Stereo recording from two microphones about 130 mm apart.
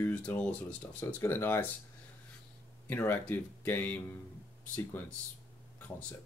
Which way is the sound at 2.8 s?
15° left (ahead or behind).